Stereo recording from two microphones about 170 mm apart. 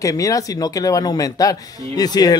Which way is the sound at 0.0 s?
20° left (ahead or behind).